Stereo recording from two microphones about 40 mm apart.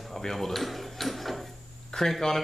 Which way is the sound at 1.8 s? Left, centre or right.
Centre.